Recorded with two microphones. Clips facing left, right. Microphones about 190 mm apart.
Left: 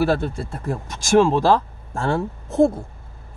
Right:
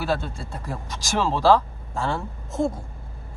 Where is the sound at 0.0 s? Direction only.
55° left (ahead or behind).